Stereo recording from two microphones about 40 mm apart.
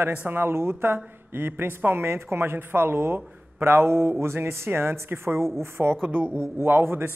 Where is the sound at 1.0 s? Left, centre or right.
Right.